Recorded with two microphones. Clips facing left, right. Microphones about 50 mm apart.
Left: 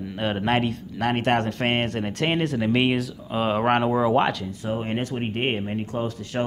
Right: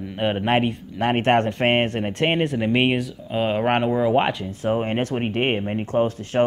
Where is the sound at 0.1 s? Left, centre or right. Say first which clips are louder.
Right 3 dB; centre.